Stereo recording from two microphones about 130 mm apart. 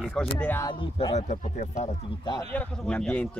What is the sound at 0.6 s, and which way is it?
Speech, 30° left (ahead or behind).